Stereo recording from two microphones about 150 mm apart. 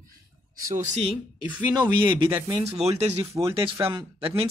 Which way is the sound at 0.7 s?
45° right (ahead or behind).